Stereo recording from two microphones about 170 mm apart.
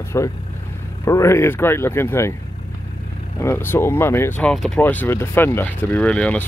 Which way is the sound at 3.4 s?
15° left (ahead or behind).